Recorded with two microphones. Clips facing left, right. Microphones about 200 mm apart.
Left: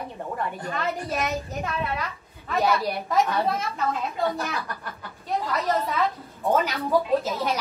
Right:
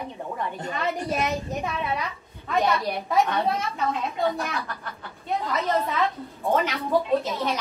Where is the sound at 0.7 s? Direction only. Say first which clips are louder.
Right 2 dB; centre (ahead or behind).